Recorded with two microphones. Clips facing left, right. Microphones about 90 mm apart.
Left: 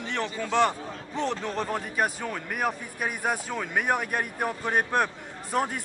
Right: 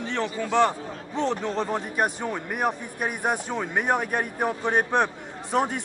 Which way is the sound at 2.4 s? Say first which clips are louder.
Right 2 dB; 5° right (ahead or behind).